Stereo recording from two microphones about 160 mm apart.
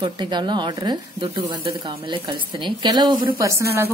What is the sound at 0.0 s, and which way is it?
Speech, 30° right (ahead or behind).